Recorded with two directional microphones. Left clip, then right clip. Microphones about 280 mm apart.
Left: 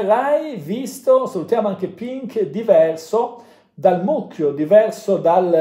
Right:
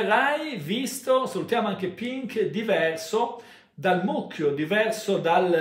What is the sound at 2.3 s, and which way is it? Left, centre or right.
Speech, centre.